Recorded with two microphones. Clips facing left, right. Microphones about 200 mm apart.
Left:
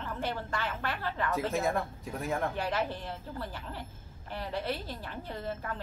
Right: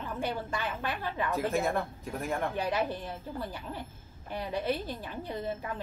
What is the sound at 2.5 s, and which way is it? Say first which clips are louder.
A woman's voice: right 2 dB; 15° right (ahead or behind).